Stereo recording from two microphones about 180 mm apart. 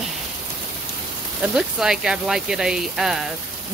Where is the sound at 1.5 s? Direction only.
5° right (ahead or behind).